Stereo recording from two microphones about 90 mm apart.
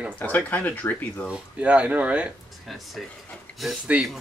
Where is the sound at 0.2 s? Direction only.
15° left (ahead or behind).